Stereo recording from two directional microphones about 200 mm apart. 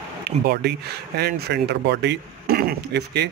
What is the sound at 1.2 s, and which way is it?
Speech, 55° right (ahead or behind).